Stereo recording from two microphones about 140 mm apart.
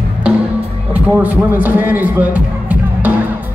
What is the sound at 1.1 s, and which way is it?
Speech, 15° right (ahead or behind).